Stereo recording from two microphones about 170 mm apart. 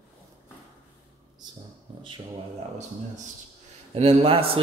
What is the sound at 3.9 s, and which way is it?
Speech, 35° right (ahead or behind).